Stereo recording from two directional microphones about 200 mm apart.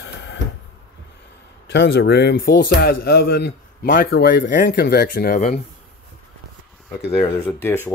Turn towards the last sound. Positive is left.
turn(degrees=10)  # may be behind; listen again after turning